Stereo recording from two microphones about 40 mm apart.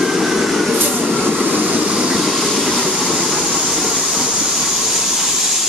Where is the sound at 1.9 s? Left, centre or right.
Right.